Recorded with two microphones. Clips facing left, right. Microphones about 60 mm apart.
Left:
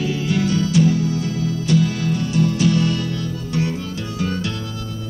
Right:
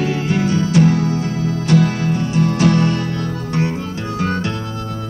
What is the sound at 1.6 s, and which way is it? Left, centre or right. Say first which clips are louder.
Music: right 4 dB; right.